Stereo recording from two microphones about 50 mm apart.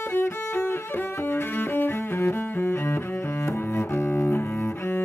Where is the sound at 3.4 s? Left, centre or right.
Left.